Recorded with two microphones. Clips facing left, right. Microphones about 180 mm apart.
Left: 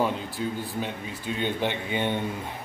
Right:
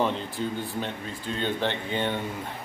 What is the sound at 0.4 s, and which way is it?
Speech, 5° left (ahead or behind).